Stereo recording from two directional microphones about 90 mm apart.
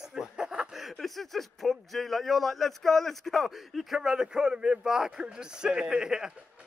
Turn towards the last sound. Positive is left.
turn(degrees=-5)  # may be behind; listen again after turning